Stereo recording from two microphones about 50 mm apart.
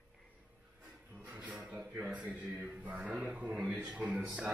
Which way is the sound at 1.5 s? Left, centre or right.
Centre.